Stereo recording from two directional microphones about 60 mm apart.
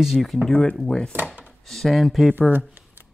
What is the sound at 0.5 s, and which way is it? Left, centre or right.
Speech, left.